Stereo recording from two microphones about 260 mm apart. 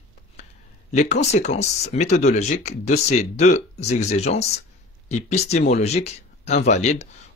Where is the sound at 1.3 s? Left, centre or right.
Left.